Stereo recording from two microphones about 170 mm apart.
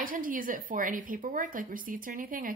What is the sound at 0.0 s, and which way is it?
A woman's voice, 55° right (ahead or behind).